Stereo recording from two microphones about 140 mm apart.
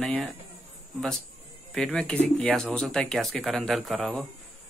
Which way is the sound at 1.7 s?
5° left (ahead or behind).